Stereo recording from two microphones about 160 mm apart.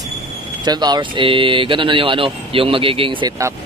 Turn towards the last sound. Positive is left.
turn(degrees=-35)  # may be behind; listen again after turning